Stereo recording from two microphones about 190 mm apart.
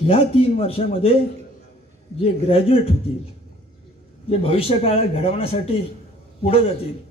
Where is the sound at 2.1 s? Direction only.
30° left (ahead or behind).